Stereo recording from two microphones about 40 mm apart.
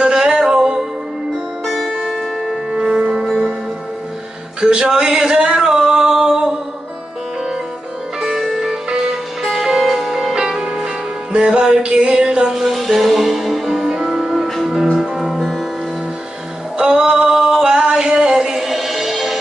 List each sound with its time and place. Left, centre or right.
0.0 s music: centre
1.7 s music: centre
2.7 s music: centre
4.6 s singing: right
8.4 s music: centre
9.4 s music: centre
11.3 s music: right
12.4 s music: centre
14.8 s music: centre
16.7 s a sound: centre
18.7 s music: centre